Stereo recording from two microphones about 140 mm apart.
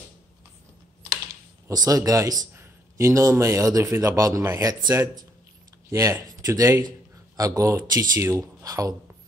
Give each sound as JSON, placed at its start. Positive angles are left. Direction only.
{"t": 1.7, "sound": "a man's voice", "side_deg": -25}